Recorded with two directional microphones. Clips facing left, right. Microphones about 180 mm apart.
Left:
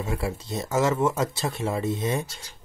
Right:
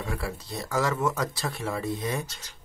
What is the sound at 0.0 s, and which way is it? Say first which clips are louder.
Speech: left 4 dB; 25° left (ahead or behind).